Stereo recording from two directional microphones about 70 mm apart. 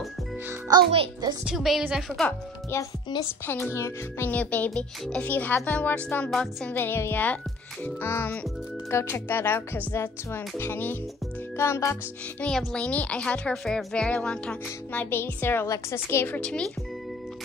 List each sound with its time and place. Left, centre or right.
0.7 s a child's voice: right
1.4 s speech: centre
2.7 s speech: left
4.3 s a woman's voice: left
6.3 s speech: centre
6.7 s speech: left
12.4 s a woman's voice: centre
15.0 s speech: left
15.6 s speech: left
16.3 s speech: centre